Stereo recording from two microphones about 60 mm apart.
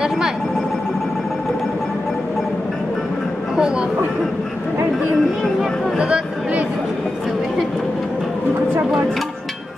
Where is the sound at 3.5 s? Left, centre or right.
Centre.